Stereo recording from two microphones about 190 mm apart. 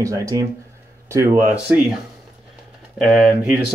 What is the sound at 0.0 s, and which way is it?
Speech, 15° right (ahead or behind).